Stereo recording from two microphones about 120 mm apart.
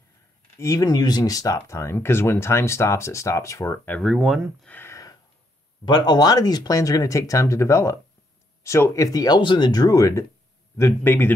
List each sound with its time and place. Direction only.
0.6 s speech: 25° left (ahead or behind)
4.0 s speech: centre (ahead or behind)
4.6 s a sound: 20° left (ahead or behind)
5.9 s speech: 35° left (ahead or behind); by 11.3 s 20° left (ahead or behind)